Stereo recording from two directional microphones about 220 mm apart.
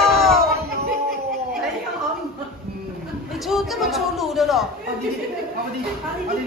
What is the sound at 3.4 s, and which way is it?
Speech, centre (ahead or behind).